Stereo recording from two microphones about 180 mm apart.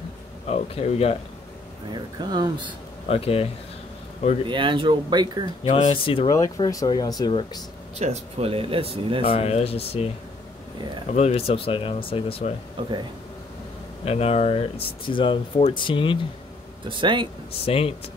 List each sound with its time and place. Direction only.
0.5 s speech: 35° left (ahead or behind)
2.1 s speech: 25° right (ahead or behind)
3.1 s speech: 30° left (ahead or behind)
4.5 s speech: 25° right (ahead or behind)
5.6 s speech: 30° left (ahead or behind)
6.3 s speech: 20° left (ahead or behind)
8.0 s speech: 35° right (ahead or behind)
9.2 s speech: 35° left (ahead or behind)
11.1 s speech: 35° left (ahead or behind)
14.0 s speech: 35° left (ahead or behind)
16.9 s speech: 25° right (ahead or behind)
17.6 s speech: 30° left (ahead or behind)